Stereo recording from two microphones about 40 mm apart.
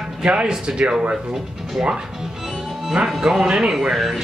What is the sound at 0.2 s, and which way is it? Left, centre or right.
Speech, right.